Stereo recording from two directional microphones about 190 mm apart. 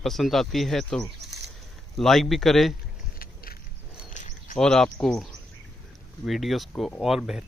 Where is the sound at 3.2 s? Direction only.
50° left (ahead or behind).